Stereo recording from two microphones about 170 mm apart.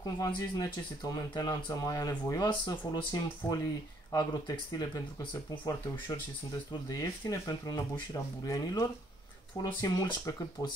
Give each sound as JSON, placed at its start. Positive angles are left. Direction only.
{"t": 0.0, "sound": "speech", "side_deg": 20}